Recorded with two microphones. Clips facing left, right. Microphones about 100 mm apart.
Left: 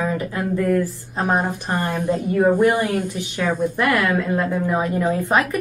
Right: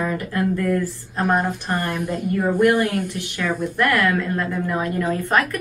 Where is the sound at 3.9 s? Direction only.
5° left (ahead or behind).